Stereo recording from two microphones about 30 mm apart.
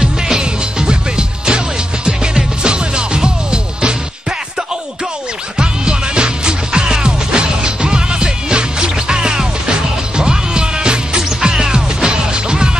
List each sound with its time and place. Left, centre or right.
0.0 s music: right
2.6 s music: right
5.6 s music: right
12.1 s music: right